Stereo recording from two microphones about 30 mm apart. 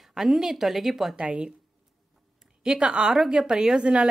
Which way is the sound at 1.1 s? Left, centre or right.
Right.